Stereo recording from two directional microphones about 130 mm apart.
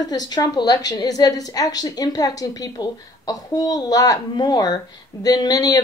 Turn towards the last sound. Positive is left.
turn(degrees=30)  # may be behind; listen again after turning